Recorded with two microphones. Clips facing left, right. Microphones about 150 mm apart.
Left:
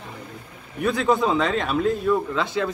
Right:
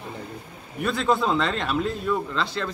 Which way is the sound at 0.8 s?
5° left (ahead or behind).